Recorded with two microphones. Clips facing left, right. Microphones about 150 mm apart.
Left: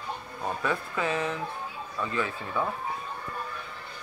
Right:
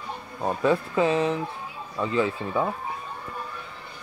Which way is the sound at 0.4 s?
25° right (ahead or behind).